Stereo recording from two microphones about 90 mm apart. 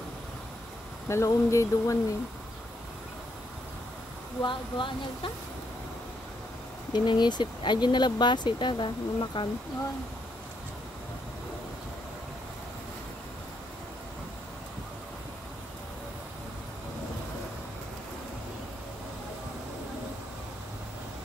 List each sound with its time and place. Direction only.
1.0 s speech: 30° left (ahead or behind)
4.4 s speech: 65° left (ahead or behind)
6.9 s speech: 55° left (ahead or behind)